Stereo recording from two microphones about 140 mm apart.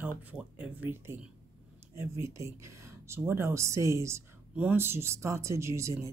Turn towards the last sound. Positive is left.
turn(degrees=-20)  # may be behind; listen again after turning